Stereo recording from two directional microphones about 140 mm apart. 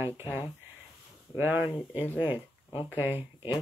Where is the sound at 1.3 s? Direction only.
15° right (ahead or behind).